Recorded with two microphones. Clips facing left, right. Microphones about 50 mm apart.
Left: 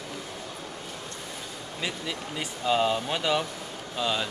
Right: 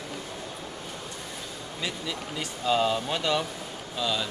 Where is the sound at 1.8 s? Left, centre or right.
Centre.